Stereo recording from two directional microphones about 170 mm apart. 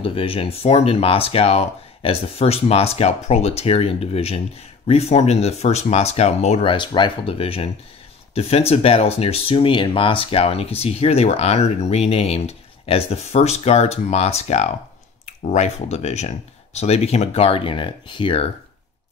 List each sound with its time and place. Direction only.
0.0 s speech: 30° left (ahead or behind)